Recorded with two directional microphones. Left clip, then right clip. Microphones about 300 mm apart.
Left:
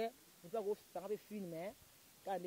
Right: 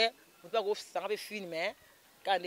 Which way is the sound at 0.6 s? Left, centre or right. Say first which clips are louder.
Right 7 dB; right.